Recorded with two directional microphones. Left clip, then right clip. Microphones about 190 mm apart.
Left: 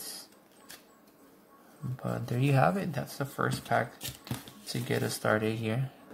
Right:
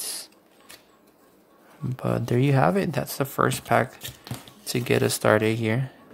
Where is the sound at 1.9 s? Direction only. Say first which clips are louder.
Right 10 dB; 45° right (ahead or behind).